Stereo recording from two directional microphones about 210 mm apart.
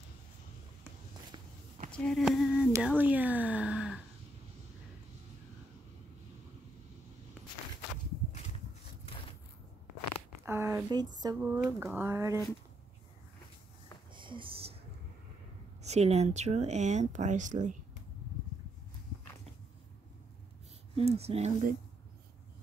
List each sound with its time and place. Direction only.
1.3 s walk: 25° right (ahead or behind)
1.9 s speech: centre (ahead or behind)
7.4 s walk: 5° right (ahead or behind)
10.4 s a sound: 10° right (ahead or behind)
11.1 s speech: 15° right (ahead or behind)
14.1 s a sound: 25° right (ahead or behind)
15.8 s speech: 30° right (ahead or behind)
20.9 s speech: 30° right (ahead or behind)